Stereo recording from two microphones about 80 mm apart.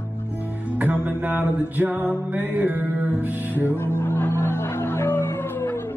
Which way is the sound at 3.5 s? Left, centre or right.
Left.